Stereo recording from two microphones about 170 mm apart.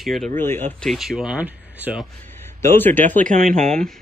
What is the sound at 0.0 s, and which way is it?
Speech, centre (ahead or behind).